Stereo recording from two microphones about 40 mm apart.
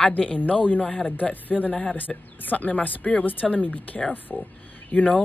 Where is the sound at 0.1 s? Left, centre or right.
Left.